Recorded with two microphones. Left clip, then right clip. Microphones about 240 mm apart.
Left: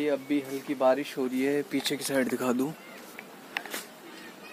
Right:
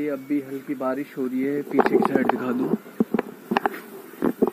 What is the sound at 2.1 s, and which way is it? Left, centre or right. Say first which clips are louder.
Speech: right 5 dB; left.